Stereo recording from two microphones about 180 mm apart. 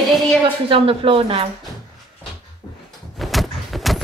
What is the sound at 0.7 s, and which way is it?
Speech, 30° right (ahead or behind).